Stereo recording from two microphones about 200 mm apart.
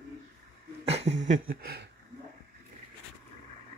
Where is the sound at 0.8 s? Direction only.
35° right (ahead or behind); by 1.9 s 50° right (ahead or behind).